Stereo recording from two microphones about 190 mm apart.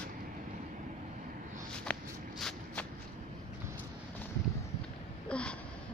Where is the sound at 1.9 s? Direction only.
5° left (ahead or behind).